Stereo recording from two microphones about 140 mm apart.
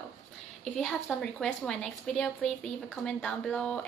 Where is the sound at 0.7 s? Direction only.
5° left (ahead or behind).